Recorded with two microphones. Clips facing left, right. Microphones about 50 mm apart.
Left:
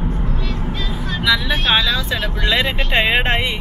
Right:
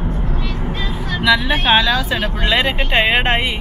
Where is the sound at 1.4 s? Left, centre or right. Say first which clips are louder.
Right 3 dB; centre.